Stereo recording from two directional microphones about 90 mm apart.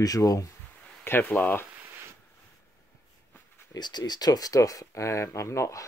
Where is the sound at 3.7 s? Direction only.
50° left (ahead or behind).